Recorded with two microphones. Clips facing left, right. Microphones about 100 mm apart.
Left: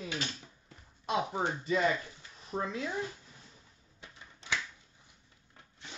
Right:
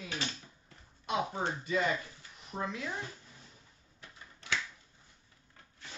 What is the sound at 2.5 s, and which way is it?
Speech, 25° left (ahead or behind).